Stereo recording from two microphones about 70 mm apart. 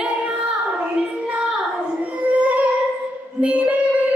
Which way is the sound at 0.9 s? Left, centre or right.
Centre.